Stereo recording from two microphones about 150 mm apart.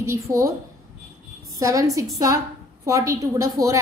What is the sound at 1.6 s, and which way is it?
A woman's voice, 20° right (ahead or behind).